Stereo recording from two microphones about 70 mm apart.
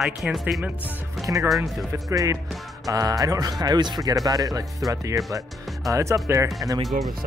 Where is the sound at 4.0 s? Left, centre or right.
Right.